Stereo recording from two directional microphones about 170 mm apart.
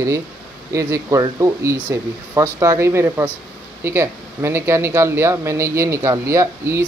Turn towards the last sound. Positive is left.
turn(degrees=-15)  # may be behind; listen again after turning